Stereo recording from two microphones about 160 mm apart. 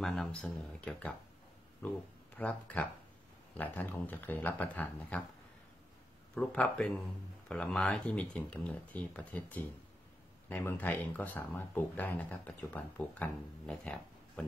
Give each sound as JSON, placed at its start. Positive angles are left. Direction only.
{"t": 0.0, "sound": "speech", "side_deg": 0}
{"t": 6.3, "sound": "speech", "side_deg": 5}